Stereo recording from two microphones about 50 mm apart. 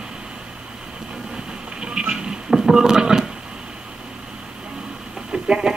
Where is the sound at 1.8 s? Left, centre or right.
Centre.